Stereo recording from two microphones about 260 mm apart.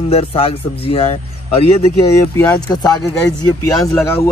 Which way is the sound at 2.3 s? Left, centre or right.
Centre.